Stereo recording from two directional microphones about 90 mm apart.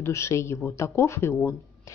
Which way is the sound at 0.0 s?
35° left (ahead or behind).